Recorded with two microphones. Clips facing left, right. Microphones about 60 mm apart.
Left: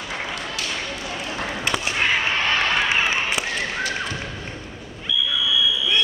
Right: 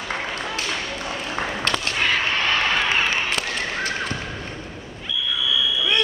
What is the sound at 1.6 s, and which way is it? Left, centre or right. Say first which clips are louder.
Whip: left 2 dB; centre.